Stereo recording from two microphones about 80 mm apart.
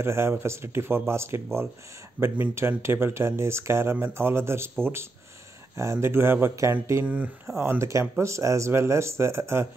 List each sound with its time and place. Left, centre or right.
0.0 s speech: right
5.8 s speech: right